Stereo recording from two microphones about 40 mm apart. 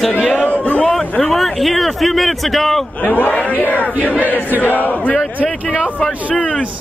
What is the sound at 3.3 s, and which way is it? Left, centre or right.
Speech, left.